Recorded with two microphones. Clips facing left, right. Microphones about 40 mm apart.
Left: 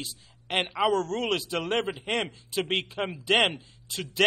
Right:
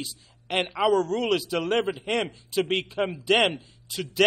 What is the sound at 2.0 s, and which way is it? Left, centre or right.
Speech, left.